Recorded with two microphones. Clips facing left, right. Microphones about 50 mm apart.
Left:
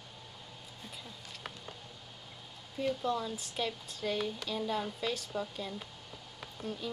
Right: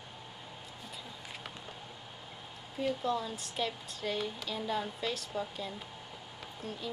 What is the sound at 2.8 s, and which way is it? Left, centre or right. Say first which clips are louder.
Speech: even; centre.